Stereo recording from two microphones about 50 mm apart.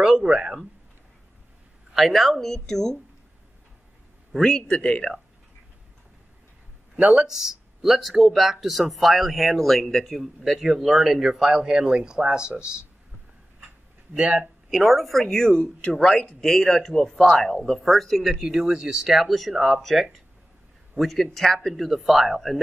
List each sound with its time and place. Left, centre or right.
0.0 s speech: centre
2.0 s speech: centre
4.4 s speech: centre
7.0 s speech: right
7.2 s speech: centre
14.1 s speech: right
14.7 s speech: centre